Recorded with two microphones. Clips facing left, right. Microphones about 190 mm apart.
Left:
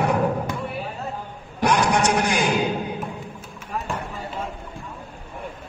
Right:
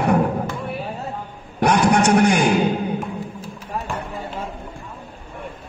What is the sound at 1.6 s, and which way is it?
Speech, 60° right (ahead or behind).